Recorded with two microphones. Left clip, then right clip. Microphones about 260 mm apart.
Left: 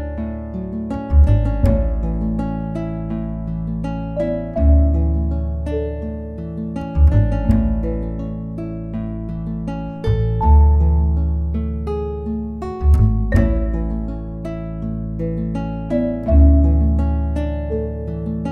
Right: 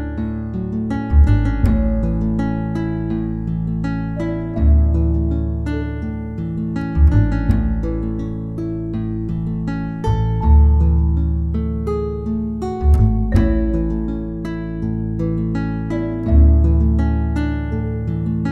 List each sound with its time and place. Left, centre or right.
7.2 s music: centre
13.0 s music: centre